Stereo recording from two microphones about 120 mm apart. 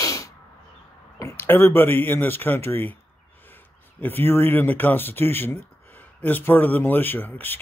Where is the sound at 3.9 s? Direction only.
15° left (ahead or behind).